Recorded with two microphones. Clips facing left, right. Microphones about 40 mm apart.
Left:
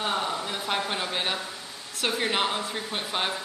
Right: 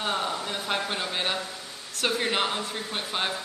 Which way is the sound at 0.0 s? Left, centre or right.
Centre.